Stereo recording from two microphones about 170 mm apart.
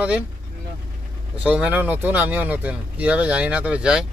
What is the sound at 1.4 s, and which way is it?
Speech, 5° right (ahead or behind).